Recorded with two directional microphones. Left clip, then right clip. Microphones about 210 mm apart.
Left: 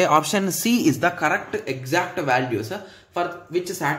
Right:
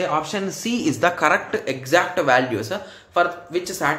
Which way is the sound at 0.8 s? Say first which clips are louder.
Right 2 dB; 15° left (ahead or behind).